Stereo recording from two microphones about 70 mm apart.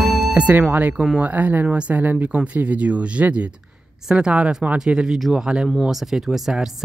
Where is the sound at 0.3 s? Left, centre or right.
Right.